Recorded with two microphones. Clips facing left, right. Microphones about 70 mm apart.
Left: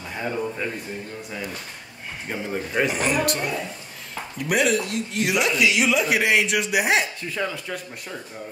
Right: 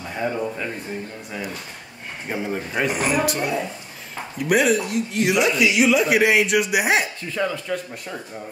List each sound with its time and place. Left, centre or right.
0.1 s speech: centre
2.2 s speech: centre